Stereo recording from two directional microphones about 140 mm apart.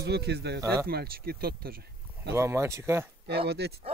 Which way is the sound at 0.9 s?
90° right.